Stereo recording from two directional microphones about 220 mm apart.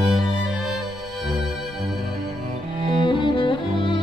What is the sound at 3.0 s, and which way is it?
Music, 20° left (ahead or behind).